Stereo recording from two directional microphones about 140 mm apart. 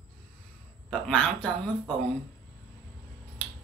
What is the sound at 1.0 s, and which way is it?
Speech, 5° left (ahead or behind).